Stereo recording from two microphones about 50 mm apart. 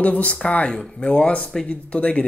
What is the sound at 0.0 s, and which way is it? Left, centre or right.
Speech, left.